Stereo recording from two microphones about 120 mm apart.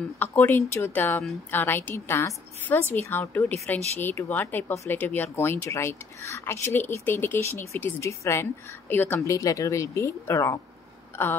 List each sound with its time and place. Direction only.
0.2 s a woman's voice: 20° left (ahead or behind)